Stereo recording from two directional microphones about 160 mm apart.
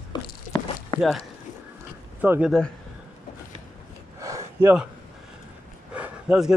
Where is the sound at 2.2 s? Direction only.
10° right (ahead or behind).